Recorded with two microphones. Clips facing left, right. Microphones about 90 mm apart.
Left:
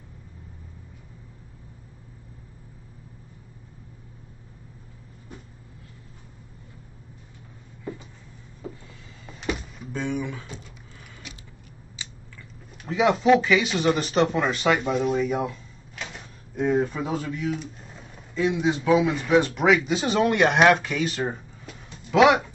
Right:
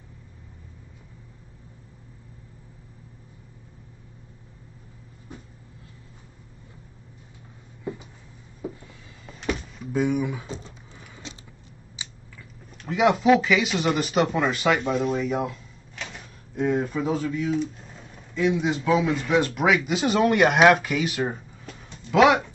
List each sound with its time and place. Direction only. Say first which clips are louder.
8.6 s a sound: right 4 dB; 5° right (ahead or behind)
9.2 s door: right 1 dB; 5° left (ahead or behind)
9.9 s speech: right 5 dB; 10° right (ahead or behind)
10.4 s speech: right 4 dB; 30° right (ahead or behind)
11.3 s vehicle: right 4 dB; 25° right (ahead or behind)
12.0 s a sound: even; 20° right (ahead or behind)
12.4 s speech: right 1 dB; centre (ahead or behind)
17.4 s a sound: right 4 dB; centre (ahead or behind)
18.8 s speech: left 1 dB; centre (ahead or behind)